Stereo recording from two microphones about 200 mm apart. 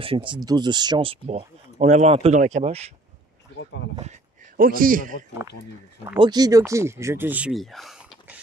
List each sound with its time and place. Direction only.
0.0 s speech: 25° right (ahead or behind)
4.0 s speech: 40° right (ahead or behind)
6.1 s speech: 20° right (ahead or behind); by 8.4 s 5° right (ahead or behind)